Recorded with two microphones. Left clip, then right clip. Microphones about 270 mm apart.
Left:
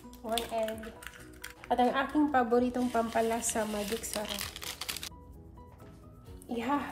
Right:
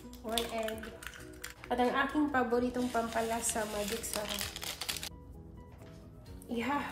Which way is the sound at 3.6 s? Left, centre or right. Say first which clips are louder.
Left 1 dB; centre.